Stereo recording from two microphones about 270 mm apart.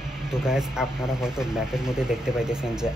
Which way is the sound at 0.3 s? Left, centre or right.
Centre.